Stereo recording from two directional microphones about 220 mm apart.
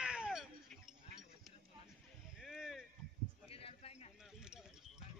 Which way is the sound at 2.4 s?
Centre (ahead or behind).